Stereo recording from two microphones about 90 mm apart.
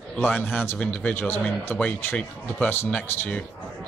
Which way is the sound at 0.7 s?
15° left (ahead or behind).